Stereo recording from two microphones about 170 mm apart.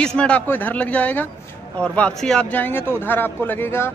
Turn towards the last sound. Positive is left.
turn(degrees=15)  # may be behind; listen again after turning